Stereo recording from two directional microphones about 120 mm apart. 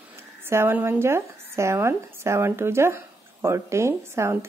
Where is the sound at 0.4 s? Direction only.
20° right (ahead or behind).